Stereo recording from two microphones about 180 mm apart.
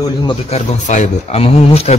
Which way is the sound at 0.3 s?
40° left (ahead or behind).